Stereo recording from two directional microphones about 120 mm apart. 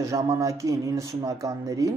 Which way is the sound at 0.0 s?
25° right (ahead or behind).